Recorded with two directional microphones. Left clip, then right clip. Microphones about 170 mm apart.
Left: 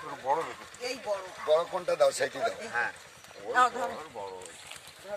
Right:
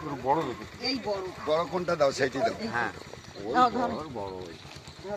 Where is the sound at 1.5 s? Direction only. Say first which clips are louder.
Left 1 dB; 65° left (ahead or behind).